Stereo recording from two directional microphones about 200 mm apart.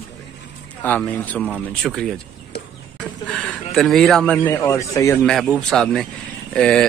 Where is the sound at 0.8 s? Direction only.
10° left (ahead or behind).